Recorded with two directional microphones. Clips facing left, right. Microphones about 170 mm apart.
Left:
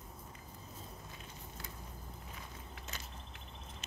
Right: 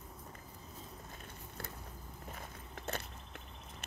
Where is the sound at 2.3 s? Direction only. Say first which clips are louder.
Right 2 dB; 55° right (ahead or behind).